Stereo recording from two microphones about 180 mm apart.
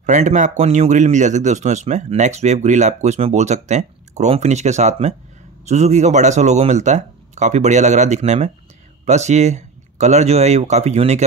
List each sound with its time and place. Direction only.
0.0 s speech: 40° right (ahead or behind)